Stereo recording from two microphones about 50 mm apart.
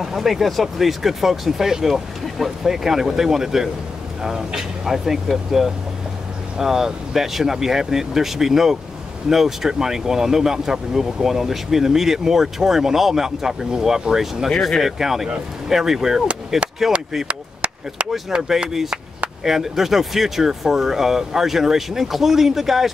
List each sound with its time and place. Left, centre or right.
0.0 s speech: centre
14.5 s speech: centre
14.8 s speech: centre
17.3 s chop: right
18.3 s speech: centre